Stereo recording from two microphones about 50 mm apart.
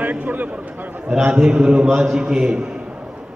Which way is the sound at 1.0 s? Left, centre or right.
Centre.